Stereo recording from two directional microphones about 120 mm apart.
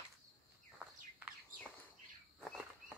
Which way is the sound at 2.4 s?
Centre (ahead or behind).